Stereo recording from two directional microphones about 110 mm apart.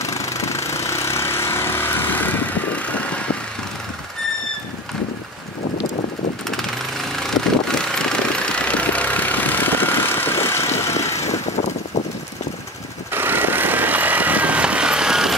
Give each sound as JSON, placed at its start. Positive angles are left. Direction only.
{"t": 0.0, "sound": "vehicle", "side_deg": 30}
{"t": 7.2, "sound": "vehicle", "side_deg": 5}
{"t": 11.2, "sound": "vehicle", "side_deg": 90}
{"t": 13.1, "sound": "vehicle", "side_deg": -20}